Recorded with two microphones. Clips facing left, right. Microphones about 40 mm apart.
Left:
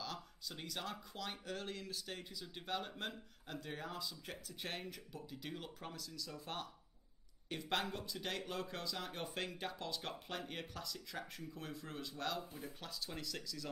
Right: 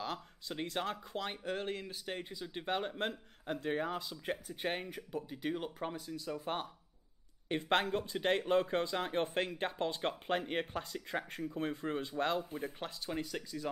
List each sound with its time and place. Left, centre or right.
0.0 s speech: right